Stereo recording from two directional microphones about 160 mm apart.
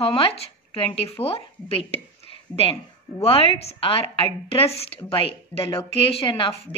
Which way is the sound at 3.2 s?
35° left (ahead or behind).